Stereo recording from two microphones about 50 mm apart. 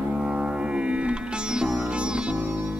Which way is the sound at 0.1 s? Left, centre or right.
Centre.